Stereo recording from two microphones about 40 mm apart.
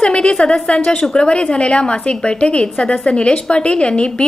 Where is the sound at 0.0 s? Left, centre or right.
Left.